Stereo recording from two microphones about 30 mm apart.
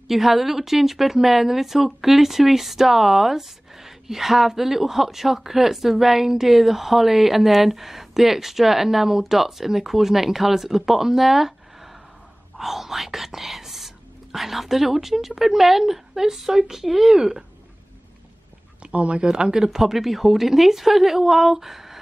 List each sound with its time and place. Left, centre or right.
0.1 s speech: centre
17.2 s speech: right
18.8 s a sound: right
19.3 s speech: right
19.8 s speech: centre